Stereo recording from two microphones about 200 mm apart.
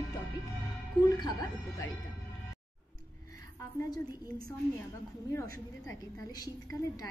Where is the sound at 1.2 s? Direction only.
20° left (ahead or behind).